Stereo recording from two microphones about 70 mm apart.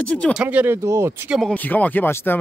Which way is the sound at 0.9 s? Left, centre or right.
Right.